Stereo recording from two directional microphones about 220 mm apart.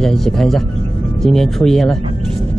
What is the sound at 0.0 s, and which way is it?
Speech, centre (ahead or behind).